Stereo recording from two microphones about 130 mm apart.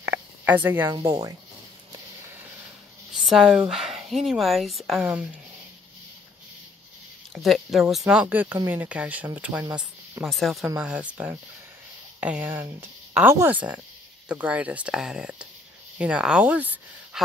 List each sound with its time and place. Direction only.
0.0 s a sound: 10° right (ahead or behind)
1.0 s speech: 30° right (ahead or behind)
3.2 s speech: 5° right (ahead or behind)
7.3 s speech: centre (ahead or behind)
10.2 s speech: centre (ahead or behind)
10.8 s speech: 10° right (ahead or behind)